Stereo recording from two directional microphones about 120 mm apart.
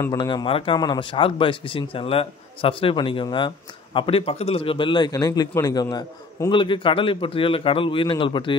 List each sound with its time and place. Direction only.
0.0 s a man's voice: 30° left (ahead or behind)
0.5 s a man's voice: 45° left (ahead or behind)